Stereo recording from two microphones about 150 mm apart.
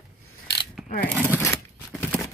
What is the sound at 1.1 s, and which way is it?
Speech, 15° left (ahead or behind).